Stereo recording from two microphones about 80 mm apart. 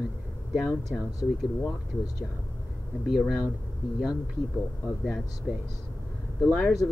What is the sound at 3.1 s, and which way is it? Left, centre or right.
Speech, centre.